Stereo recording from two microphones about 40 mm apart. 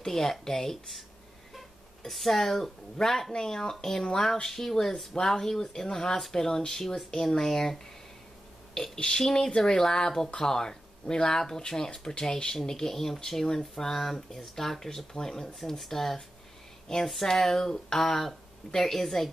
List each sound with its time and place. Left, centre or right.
0.0 s speech: centre
2.0 s speech: centre
8.7 s speech: centre